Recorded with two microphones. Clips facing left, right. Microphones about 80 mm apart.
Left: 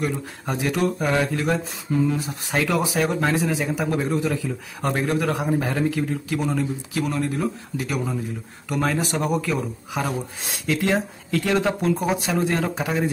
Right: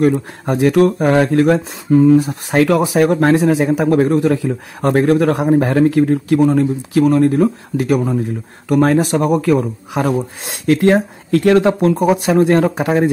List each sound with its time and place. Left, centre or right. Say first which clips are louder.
0.0 s a man's voice: right 12 dB; right
6.6 s a man's voice: right 11 dB; right
10.7 s speech: right 10 dB; right